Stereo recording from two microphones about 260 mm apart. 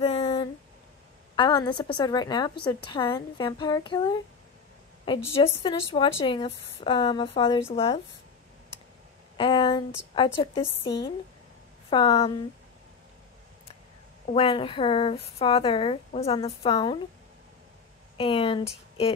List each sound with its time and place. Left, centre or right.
0.0 s a sound: left
1.3 s a woman's voice: centre
9.4 s speech: centre
11.9 s speech: left
14.3 s speech: centre
18.1 s speech: centre